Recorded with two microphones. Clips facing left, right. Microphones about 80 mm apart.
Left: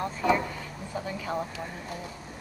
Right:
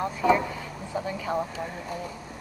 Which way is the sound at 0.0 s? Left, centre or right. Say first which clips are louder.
Right 3 dB; centre.